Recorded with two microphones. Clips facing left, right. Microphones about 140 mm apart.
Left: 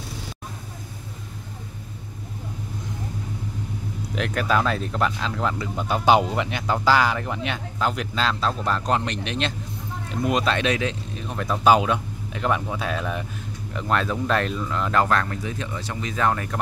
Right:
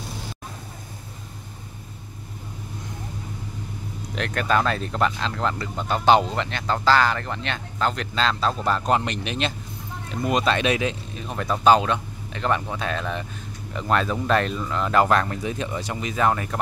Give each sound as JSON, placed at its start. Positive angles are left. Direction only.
{"t": 4.1, "sound": "speech", "side_deg": 5}
{"t": 15.0, "sound": "speech", "side_deg": -20}